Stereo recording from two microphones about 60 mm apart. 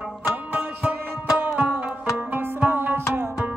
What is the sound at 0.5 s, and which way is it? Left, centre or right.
Music, right.